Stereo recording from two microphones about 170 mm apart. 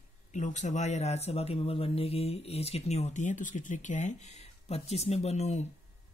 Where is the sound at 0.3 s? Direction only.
45° left (ahead or behind).